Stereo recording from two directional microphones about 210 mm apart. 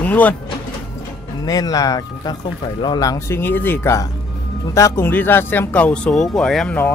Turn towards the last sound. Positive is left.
turn(degrees=5)  # may be behind; listen again after turning